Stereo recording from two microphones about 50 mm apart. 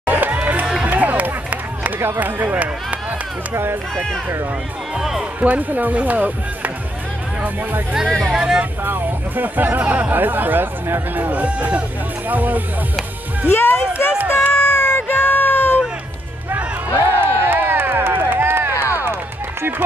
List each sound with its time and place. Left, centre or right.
0.0 s music: right
0.8 s run: right
2.1 s speech: right
5.4 s speech: right
8.4 s speech: right
8.8 s speech: right
13.5 s music: left
14.3 s a sound: left
17.0 s crowd: right